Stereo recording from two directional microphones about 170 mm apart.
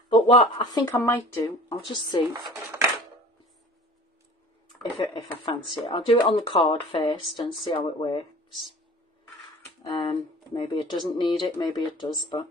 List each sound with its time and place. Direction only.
0.1 s speech: 30° left (ahead or behind)
2.3 s speech: 25° right (ahead or behind)
4.6 s speech: 30° left (ahead or behind)
9.9 s speech: 25° left (ahead or behind)